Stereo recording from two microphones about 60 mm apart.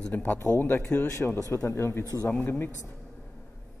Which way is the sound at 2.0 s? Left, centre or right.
Left.